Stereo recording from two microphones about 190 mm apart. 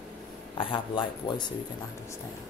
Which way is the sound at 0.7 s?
25° left (ahead or behind).